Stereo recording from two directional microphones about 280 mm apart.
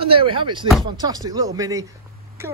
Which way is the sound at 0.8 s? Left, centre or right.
Centre.